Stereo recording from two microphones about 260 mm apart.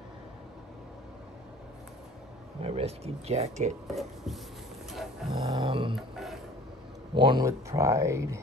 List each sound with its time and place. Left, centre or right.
2.6 s speech: right
3.8 s speech: centre
5.3 s speech: centre
5.9 s a sound: centre
7.2 s speech: centre